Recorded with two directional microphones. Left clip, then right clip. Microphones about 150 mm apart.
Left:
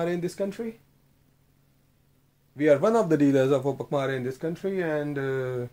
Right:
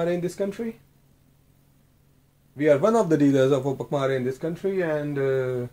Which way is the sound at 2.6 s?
45° left (ahead or behind).